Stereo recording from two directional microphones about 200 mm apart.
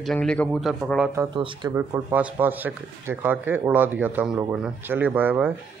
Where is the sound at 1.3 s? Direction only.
25° right (ahead or behind).